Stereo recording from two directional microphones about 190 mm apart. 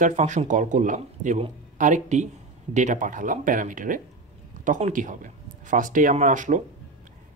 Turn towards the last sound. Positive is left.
turn(degrees=-40)  # may be behind; listen again after turning